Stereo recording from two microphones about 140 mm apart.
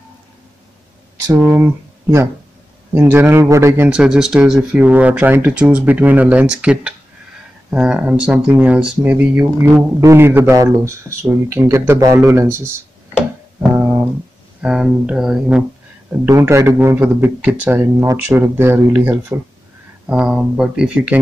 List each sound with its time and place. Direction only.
1.2 s speech: 15° right (ahead or behind)
13.7 s a sound: 15° right (ahead or behind)
14.6 s speech: 5° right (ahead or behind)
16.1 s speech: 20° right (ahead or behind)